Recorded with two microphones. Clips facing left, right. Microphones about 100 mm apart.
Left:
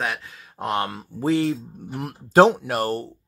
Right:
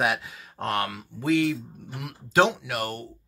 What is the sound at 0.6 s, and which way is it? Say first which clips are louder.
Speech: left 3 dB; 20° left (ahead or behind).